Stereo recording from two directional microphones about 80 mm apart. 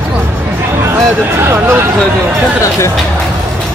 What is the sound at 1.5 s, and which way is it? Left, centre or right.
Speech, right.